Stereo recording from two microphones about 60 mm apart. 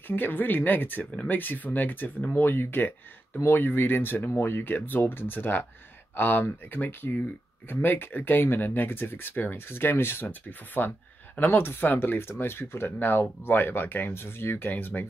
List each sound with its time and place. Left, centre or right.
0.1 s speech: left